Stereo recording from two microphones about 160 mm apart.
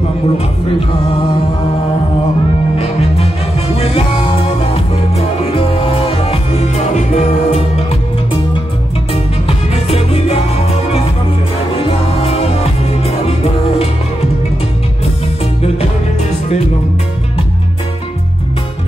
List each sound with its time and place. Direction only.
2.8 s music: 40° left (ahead or behind)